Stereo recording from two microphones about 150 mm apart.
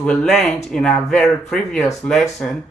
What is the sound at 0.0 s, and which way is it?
A man's voice, 5° left (ahead or behind).